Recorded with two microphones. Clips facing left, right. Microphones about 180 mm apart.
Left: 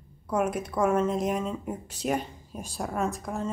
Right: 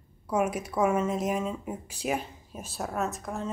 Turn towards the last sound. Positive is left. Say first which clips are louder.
# left 2 dB
turn(degrees=0)  # may be behind; listen again after turning